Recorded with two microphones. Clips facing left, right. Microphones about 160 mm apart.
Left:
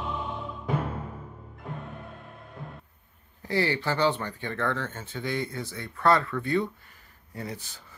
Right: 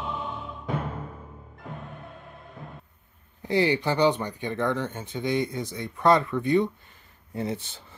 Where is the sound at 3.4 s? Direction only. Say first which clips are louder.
Right 4 dB; 15° right (ahead or behind).